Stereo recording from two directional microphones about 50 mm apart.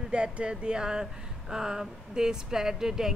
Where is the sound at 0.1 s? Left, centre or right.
Right.